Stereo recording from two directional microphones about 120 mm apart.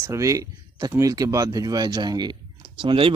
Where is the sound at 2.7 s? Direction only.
45° right (ahead or behind).